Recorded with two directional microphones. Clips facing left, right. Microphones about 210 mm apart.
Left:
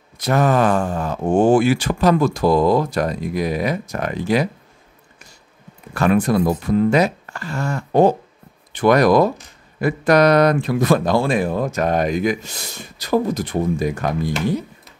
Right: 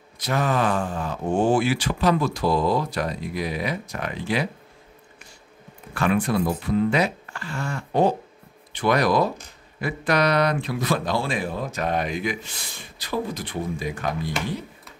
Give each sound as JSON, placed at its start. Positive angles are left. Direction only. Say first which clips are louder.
{"t": 0.2, "sound": "speech", "louder": "left 6 dB", "side_deg": 45}
{"t": 5.9, "sound": "speech", "louder": "left 5 dB", "side_deg": 40}